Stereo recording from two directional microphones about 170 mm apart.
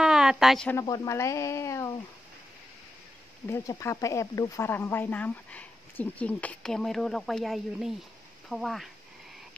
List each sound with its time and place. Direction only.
0.0 s a sound: 5° right (ahead or behind)
0.7 s speech: 20° left (ahead or behind)
3.4 s speech: 15° left (ahead or behind); by 8.8 s centre (ahead or behind)